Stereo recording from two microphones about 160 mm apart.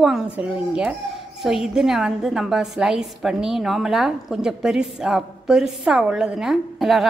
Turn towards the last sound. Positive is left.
turn(degrees=0)  # may be behind; listen again after turning